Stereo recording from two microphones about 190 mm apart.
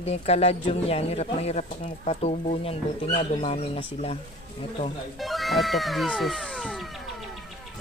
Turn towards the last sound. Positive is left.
turn(degrees=0)  # may be behind; listen again after turning